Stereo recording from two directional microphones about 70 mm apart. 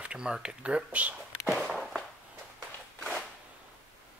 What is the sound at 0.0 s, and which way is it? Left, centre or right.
Speech, centre.